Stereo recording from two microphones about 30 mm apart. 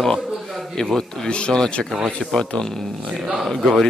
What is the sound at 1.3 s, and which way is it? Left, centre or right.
Speech, left.